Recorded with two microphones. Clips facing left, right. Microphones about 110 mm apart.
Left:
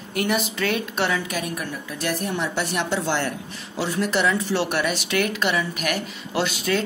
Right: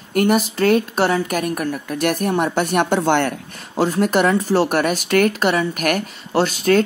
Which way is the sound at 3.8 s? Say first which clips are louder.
Right 6 dB; 45° right (ahead or behind).